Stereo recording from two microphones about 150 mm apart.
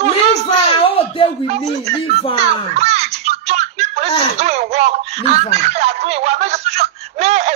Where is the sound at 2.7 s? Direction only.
45° right (ahead or behind).